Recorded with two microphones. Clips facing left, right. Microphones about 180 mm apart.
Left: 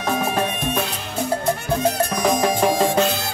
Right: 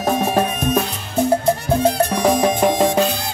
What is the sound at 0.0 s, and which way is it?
Music, 40° right (ahead or behind).